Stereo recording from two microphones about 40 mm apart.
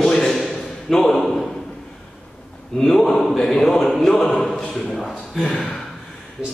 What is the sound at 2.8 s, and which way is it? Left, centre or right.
A man's voice, centre.